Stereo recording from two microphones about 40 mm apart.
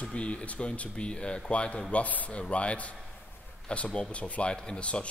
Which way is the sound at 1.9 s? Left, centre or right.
Left.